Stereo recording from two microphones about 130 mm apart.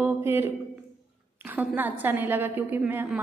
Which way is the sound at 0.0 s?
15° right (ahead or behind).